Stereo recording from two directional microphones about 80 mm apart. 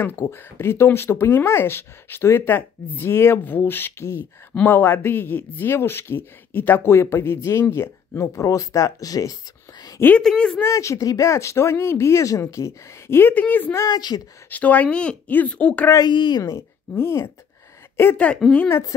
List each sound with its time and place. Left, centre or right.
0.0 s speech: left
10.1 s speech: centre
10.6 s speech: left
13.3 s speech: centre
13.7 s speech: left
14.5 s speech: left
16.0 s speech: left
16.4 s speech: left
18.1 s speech: centre
18.7 s speech: left